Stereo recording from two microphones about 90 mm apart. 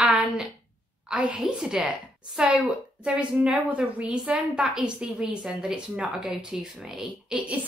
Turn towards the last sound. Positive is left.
turn(degrees=-15)  # may be behind; listen again after turning